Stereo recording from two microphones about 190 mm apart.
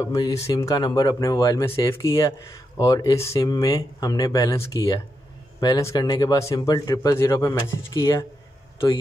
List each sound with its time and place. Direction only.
0.0 s a man's voice: 15° left (ahead or behind)